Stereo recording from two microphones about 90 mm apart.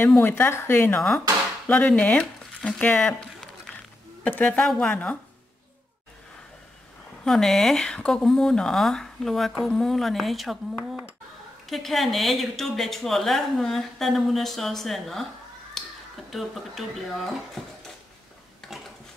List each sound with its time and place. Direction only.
0.0 s speech: 25° left (ahead or behind)
4.6 s speech: 10° left (ahead or behind)
7.2 s a woman's voice: 5° left (ahead or behind)
11.7 s a woman's voice: centre (ahead or behind)
15.8 s a sound: 5° left (ahead or behind)
16.3 s a woman's voice: centre (ahead or behind)
18.7 s a sound: centre (ahead or behind)